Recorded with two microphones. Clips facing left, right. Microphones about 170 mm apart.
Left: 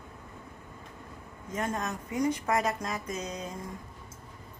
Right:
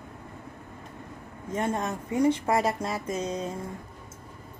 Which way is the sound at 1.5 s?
30° right (ahead or behind).